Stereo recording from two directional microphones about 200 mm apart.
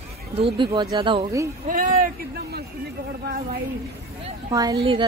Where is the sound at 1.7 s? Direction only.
45° right (ahead or behind).